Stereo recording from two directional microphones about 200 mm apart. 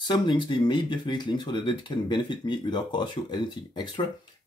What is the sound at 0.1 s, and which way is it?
Speech, 25° left (ahead or behind).